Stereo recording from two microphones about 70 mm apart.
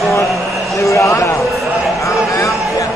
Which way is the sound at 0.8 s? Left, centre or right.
Left.